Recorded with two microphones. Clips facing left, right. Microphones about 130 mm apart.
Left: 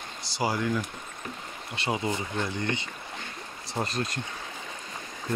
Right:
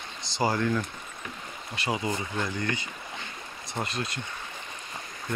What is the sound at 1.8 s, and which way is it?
Speech, 25° left (ahead or behind).